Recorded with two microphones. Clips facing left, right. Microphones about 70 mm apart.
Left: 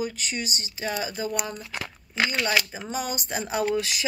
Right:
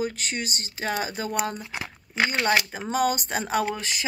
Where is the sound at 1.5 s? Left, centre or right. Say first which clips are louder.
Right 1 dB; centre.